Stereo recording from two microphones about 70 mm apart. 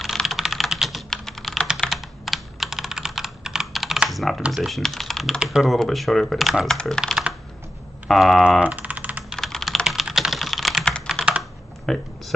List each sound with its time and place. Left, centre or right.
0.0 s typing: centre
1.8 s computer keyboard: centre
4.1 s typing: centre
4.6 s speech: centre
6.7 s speech: centre
8.1 s speech: centre
8.5 s typing: centre
9.4 s typing: centre
11.2 s computer keyboard: centre
11.9 s speech: centre